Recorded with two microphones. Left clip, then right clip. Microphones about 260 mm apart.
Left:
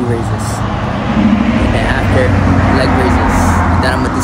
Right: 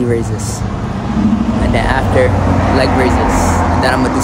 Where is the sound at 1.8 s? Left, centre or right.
Centre.